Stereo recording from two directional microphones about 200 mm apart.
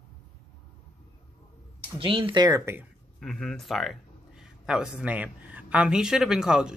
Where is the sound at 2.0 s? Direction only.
25° right (ahead or behind).